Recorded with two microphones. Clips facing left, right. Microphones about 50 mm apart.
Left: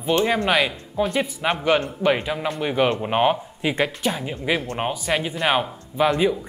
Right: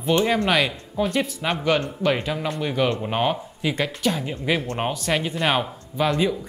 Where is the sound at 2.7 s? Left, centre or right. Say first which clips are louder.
Left 3 dB; left.